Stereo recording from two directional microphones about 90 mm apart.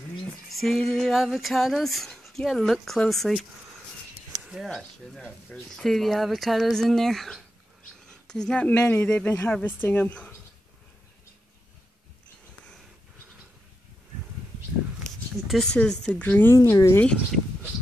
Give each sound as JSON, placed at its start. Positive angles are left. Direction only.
{"t": 0.5, "sound": "speech", "side_deg": 0}
{"t": 5.8, "sound": "speech", "side_deg": 5}
{"t": 15.0, "sound": "a sound", "side_deg": 5}
{"t": 15.7, "sound": "speech", "side_deg": 10}
{"t": 16.2, "sound": "a woman's voice", "side_deg": 20}
{"t": 16.7, "sound": "speech", "side_deg": 35}
{"t": 17.0, "sound": "speech", "side_deg": 10}